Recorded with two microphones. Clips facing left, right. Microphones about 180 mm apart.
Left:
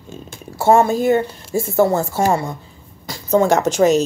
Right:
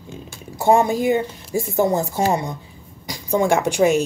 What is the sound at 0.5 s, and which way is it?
Speech, 15° right (ahead or behind).